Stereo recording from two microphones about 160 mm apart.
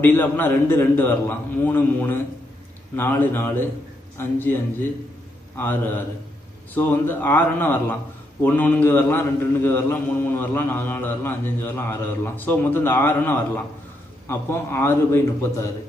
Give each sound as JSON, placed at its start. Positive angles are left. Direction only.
{"t": 0.0, "sound": "a man's voice", "side_deg": 10}
{"t": 5.6, "sound": "a man's voice", "side_deg": 15}